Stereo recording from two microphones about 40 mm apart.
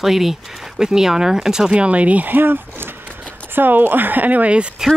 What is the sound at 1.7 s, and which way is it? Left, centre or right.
Speech, right.